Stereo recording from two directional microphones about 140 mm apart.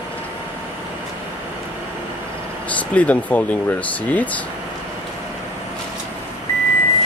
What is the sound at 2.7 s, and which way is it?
Speech, 10° left (ahead or behind).